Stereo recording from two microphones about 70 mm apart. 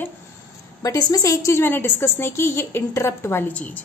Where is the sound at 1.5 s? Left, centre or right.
Left.